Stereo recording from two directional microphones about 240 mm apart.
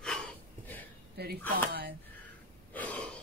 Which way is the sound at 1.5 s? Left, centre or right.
Right.